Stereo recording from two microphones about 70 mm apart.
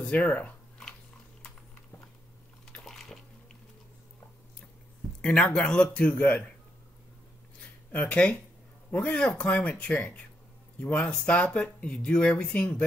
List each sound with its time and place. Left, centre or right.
0.0 s speech: centre
2.8 s bathtub: centre
5.2 s speech: centre
7.9 s speech: centre